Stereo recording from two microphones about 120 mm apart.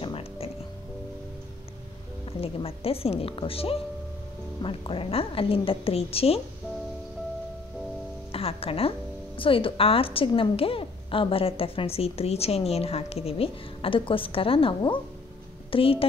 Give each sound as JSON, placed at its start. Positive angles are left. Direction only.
{"t": 0.0, "sound": "music", "side_deg": 50}
{"t": 2.4, "sound": "a woman's voice", "side_deg": 55}
{"t": 8.3, "sound": "a woman's voice", "side_deg": 55}